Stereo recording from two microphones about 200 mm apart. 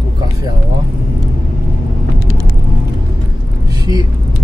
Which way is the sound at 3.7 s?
20° right (ahead or behind).